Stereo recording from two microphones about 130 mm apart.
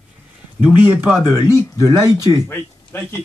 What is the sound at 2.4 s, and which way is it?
Speech, 20° left (ahead or behind).